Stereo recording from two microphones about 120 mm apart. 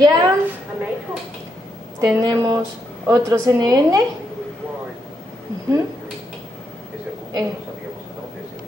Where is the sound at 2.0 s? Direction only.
30° right (ahead or behind).